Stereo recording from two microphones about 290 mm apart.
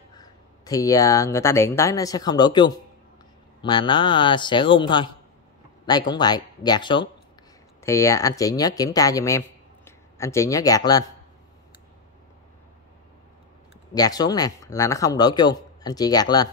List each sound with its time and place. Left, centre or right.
0.1 s speech: centre
13.9 s speech: centre